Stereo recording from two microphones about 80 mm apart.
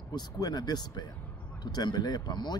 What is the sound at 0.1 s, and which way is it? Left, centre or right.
Speech, left.